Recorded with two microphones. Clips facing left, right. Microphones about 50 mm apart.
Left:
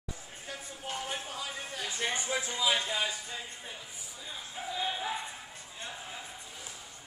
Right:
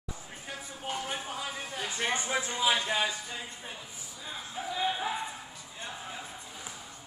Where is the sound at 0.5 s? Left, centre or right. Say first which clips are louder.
Right 2 dB; centre.